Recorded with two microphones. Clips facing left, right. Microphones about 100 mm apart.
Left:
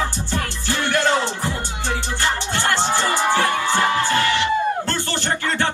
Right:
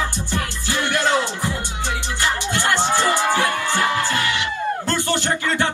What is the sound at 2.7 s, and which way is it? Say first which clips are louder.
Music: right 2 dB; 15° left (ahead or behind).